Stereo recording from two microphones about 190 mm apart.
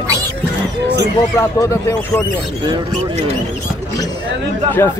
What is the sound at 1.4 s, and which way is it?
Speech, 15° left (ahead or behind).